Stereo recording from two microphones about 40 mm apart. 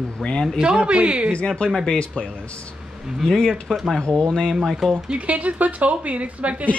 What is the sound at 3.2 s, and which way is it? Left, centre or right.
Speech, centre.